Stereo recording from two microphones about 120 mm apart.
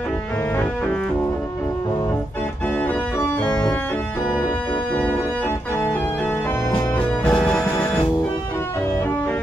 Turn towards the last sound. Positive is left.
turn(degrees=15)  # may be behind; listen again after turning